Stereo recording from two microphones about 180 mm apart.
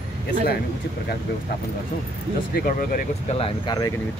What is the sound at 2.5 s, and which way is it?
Speech, 55° left (ahead or behind).